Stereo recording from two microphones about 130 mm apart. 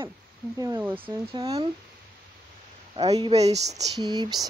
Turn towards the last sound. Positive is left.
turn(degrees=-35)  # may be behind; listen again after turning